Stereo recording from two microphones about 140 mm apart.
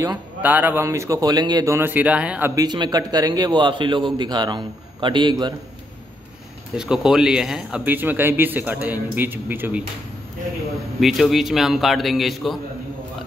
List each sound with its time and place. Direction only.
0.4 s speech: 10° right (ahead or behind)
2.5 s a man's voice: 30° right (ahead or behind)
6.8 s speech: 5° right (ahead or behind)
11.0 s a man's voice: centre (ahead or behind)